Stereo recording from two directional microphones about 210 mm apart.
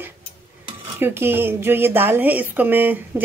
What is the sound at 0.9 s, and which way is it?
A woman's voice, 10° right (ahead or behind).